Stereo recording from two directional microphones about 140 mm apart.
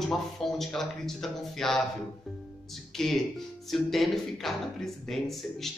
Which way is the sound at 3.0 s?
5° left (ahead or behind).